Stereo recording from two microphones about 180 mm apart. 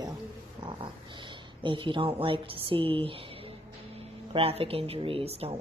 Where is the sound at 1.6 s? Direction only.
25° right (ahead or behind).